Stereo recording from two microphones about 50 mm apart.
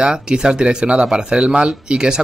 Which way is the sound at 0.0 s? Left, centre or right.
Centre.